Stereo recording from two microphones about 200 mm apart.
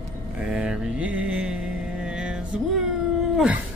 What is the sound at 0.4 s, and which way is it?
Mantra, 5° right (ahead or behind).